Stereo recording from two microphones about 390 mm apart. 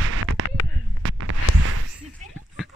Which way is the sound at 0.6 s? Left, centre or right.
Left.